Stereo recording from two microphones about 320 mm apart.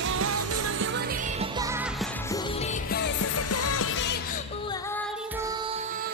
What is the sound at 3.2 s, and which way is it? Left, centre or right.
Music, left.